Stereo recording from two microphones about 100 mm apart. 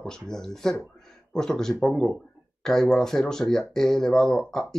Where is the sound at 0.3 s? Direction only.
5° left (ahead or behind).